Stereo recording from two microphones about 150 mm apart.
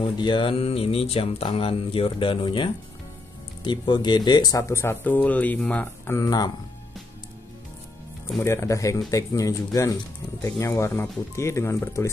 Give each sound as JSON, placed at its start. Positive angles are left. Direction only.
{"t": 0.0, "sound": "mantra", "side_deg": 35}
{"t": 3.6, "sound": "speech", "side_deg": 30}
{"t": 8.5, "sound": "speech", "side_deg": 20}